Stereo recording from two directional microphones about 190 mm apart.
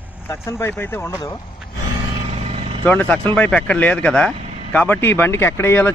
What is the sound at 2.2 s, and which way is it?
Vehicle, 30° right (ahead or behind).